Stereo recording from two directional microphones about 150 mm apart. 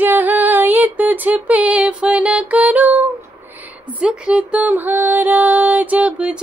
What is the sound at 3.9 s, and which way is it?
Speech, 5° right (ahead or behind).